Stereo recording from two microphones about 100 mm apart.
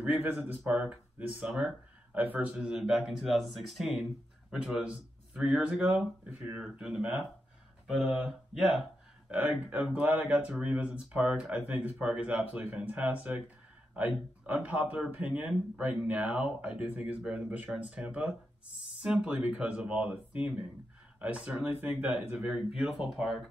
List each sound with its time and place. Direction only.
0.0 s speech: 20° right (ahead or behind); by 8.8 s 5° right (ahead or behind)
9.5 s speech: 20° right (ahead or behind); by 23.5 s 5° right (ahead or behind)